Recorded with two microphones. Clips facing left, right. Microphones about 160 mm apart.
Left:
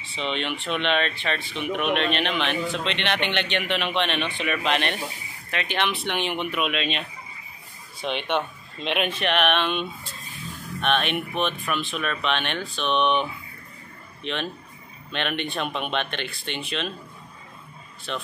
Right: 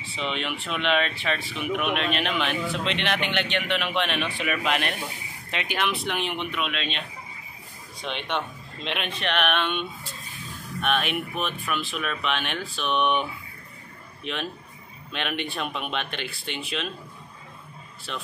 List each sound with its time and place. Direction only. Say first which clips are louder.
0.1 s speech: left 2 dB; 5° right (ahead or behind)
5.5 s speech: left 1 dB; 15° right (ahead or behind)
5.8 s speech: left 1 dB; centre (ahead or behind)
8.0 s speech: left 4 dB; 5° left (ahead or behind)
14.2 s speech: left 2 dB; 5° right (ahead or behind)